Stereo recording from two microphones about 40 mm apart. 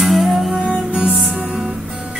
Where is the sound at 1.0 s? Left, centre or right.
Right.